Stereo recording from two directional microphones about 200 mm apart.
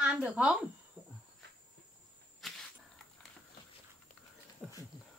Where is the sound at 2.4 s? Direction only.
Centre (ahead or behind).